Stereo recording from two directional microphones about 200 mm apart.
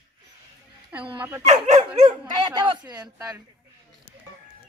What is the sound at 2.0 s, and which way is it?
A woman's voice, 25° right (ahead or behind).